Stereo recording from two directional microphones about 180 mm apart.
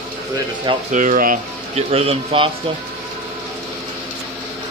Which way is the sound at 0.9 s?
45° right (ahead or behind).